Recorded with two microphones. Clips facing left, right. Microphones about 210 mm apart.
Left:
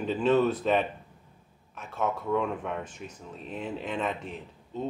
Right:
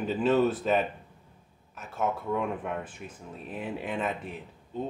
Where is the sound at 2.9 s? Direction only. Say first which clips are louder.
Left 1 dB; 55° right (ahead or behind).